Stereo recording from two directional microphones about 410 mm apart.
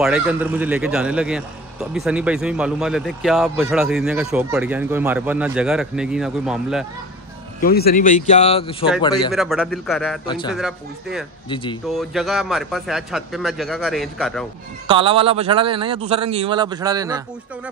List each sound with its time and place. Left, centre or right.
0.0 s a man's voice: centre
7.6 s speech: left
9.3 s a man's voice: centre
10.2 s speech: centre
10.5 s a man's voice: centre
11.4 s speech: centre
12.0 s a man's voice: centre
14.9 s speech: centre